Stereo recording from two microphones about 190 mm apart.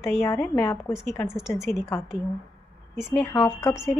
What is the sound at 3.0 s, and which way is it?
Speech, 5° right (ahead or behind).